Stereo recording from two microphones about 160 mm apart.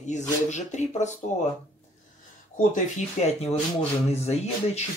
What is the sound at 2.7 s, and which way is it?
Speech, 40° left (ahead or behind).